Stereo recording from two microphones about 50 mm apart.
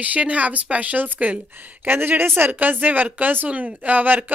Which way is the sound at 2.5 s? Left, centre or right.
Right.